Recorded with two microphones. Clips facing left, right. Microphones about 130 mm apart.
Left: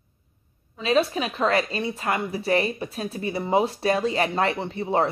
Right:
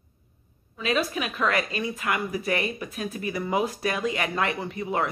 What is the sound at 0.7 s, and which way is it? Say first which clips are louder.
A woman's voice: left 4 dB; 30° left (ahead or behind).